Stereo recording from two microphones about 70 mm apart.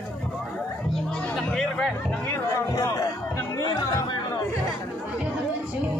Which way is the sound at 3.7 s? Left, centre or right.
Left.